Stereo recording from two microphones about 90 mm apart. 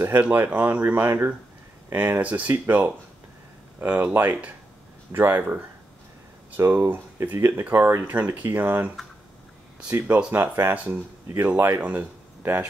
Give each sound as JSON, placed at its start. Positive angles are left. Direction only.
{"t": 0.0, "sound": "speech", "side_deg": -20}
{"t": 9.8, "sound": "speech", "side_deg": -20}